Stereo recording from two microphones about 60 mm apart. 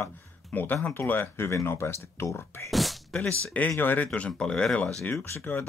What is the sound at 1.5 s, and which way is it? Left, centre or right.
Speech, left.